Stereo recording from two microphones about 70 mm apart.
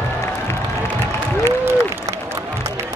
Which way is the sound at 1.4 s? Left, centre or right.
Right.